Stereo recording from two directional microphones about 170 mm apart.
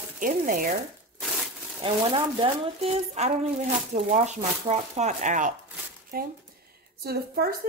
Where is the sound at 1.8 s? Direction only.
30° right (ahead or behind); by 5.5 s 45° right (ahead or behind).